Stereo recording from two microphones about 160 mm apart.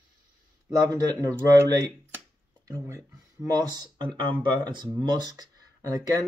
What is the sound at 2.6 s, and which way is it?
Speech, 20° right (ahead or behind).